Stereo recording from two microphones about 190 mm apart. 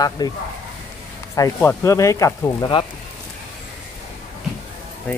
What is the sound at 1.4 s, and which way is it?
Speech, 15° left (ahead or behind).